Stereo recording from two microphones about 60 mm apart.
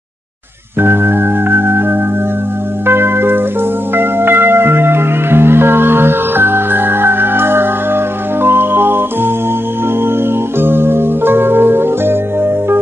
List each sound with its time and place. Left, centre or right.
0.7 s music: right
2.9 s church bell: right
3.9 s music: right
10.6 s music: right